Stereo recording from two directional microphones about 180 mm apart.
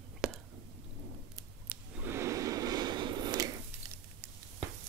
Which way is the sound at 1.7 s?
10° right (ahead or behind).